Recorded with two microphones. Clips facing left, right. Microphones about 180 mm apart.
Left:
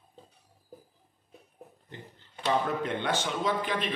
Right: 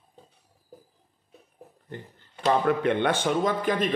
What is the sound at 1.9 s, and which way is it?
Speech, 55° right (ahead or behind).